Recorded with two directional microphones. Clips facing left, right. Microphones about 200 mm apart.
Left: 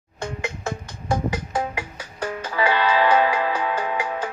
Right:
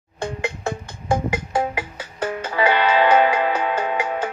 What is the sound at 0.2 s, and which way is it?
Music, 30° right (ahead or behind).